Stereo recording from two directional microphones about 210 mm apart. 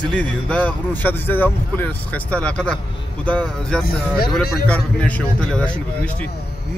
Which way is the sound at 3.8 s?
45° left (ahead or behind).